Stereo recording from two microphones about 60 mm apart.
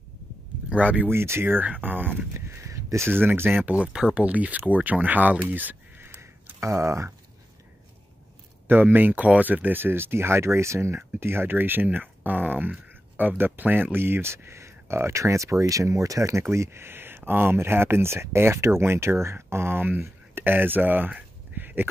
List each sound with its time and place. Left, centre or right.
0.7 s speech: right
1.1 s speech: right
2.3 s a sound: right
3.1 s speech: right
3.6 s speech: right
5.5 s a sound: right
6.6 s speech: right
8.6 s speech: right